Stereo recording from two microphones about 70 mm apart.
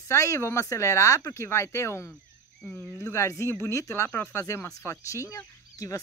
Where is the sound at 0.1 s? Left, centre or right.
Left.